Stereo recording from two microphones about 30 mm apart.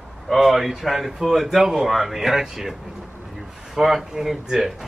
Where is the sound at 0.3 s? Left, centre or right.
Centre.